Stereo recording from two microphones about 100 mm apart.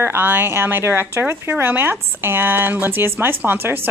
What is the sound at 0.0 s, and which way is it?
A woman's voice, 20° right (ahead or behind).